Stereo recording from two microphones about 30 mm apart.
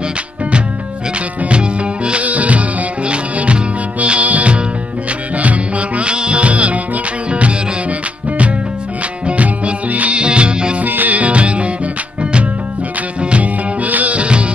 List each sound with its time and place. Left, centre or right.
1.5 s music: right
2.2 s music: right
4.0 s music: right
9.4 s music: right
10.1 s music: right
10.8 s music: right
11.1 s music: right
13.4 s music: right
14.1 s music: right